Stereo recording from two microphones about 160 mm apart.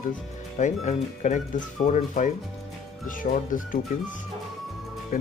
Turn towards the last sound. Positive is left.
turn(degrees=65)  # may be behind; listen again after turning